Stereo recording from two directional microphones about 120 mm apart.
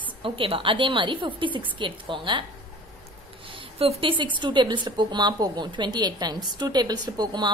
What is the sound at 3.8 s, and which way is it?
A woman's voice, 50° right (ahead or behind).